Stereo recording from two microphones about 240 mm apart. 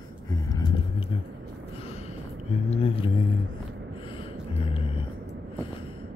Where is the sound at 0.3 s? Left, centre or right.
Centre.